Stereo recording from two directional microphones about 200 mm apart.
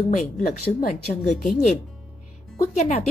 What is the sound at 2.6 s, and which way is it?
Speech, 35° left (ahead or behind).